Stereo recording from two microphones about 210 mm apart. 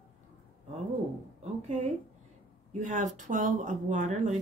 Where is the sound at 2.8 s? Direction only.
35° right (ahead or behind).